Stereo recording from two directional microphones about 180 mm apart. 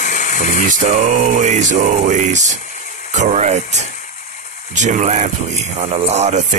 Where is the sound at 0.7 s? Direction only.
45° right (ahead or behind).